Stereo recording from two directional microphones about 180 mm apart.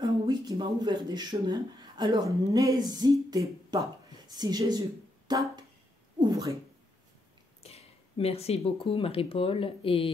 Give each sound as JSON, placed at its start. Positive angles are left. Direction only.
{"t": 0.0, "sound": "speech", "side_deg": -25}
{"t": 6.1, "sound": "cat", "side_deg": -25}
{"t": 7.6, "sound": "speech", "side_deg": 35}